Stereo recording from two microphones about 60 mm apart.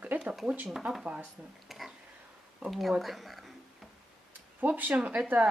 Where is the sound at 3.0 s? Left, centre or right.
Centre.